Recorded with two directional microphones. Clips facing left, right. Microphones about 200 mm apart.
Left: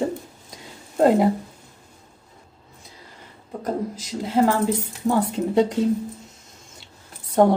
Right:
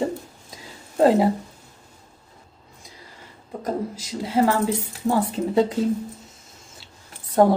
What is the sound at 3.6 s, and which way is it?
A woman's voice, 10° right (ahead or behind).